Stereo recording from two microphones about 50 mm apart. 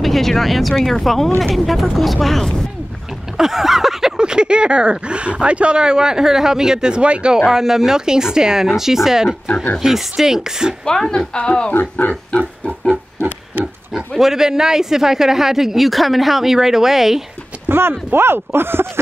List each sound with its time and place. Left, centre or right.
0.0 s speech: centre
3.3 s speech: centre
4.2 s speech: centre
7.3 s speech: centre
10.9 s speech: centre
11.7 s speech: left
12.3 s pig: left
13.9 s speech: centre
17.6 s speech: right